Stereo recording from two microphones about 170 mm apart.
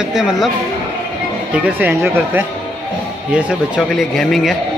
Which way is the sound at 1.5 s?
10° right (ahead or behind).